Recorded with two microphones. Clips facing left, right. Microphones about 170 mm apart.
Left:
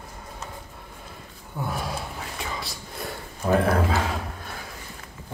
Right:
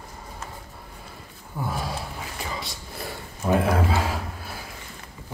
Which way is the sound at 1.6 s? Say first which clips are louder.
Even; centre (ahead or behind).